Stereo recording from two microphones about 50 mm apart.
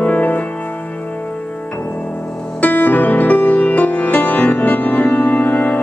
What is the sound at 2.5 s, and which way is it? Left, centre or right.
Music, left.